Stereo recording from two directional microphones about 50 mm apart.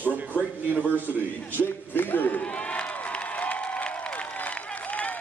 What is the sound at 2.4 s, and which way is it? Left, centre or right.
Crowd, left.